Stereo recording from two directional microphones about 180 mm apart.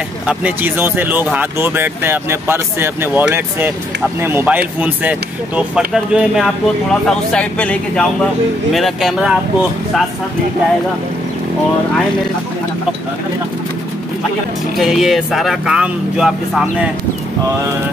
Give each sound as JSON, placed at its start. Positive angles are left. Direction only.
{"t": 0.3, "sound": "speech", "side_deg": -10}
{"t": 14.8, "sound": "speech", "side_deg": 0}